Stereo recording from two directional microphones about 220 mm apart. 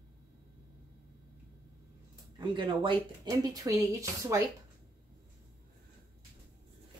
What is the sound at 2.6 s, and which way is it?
Speech, 20° right (ahead or behind).